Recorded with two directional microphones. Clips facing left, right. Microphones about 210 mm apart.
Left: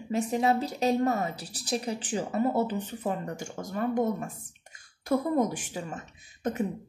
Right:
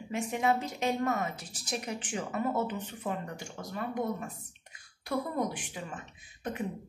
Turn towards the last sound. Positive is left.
turn(degrees=45)  # may be behind; listen again after turning